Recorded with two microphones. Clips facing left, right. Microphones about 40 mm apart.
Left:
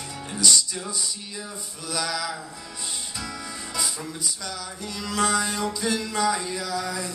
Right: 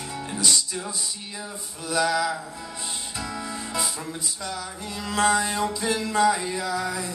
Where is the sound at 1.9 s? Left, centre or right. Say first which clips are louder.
Right 6 dB; centre.